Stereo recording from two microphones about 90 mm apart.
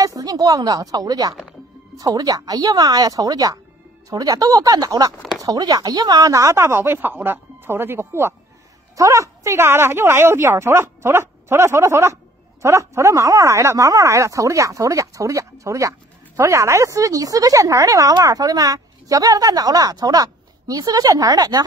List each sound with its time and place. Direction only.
0.0 s a woman's voice: 40° right (ahead or behind)